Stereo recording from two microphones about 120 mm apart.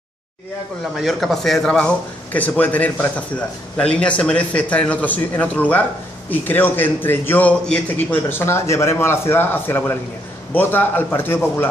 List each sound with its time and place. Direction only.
1.0 s a man's voice: centre (ahead or behind)
8.3 s a man's voice: 20° left (ahead or behind)